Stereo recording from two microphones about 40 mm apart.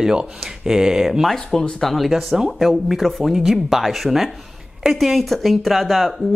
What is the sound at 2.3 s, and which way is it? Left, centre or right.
Speech, centre.